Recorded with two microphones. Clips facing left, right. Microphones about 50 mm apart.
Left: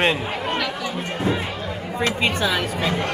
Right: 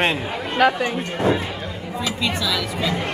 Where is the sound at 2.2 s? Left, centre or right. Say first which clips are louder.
Even; left.